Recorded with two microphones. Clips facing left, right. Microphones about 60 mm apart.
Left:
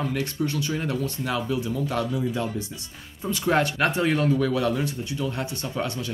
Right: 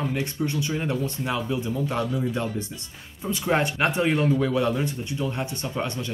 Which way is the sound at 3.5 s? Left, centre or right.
Right.